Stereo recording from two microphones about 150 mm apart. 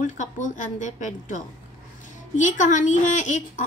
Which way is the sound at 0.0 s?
55° left (ahead or behind).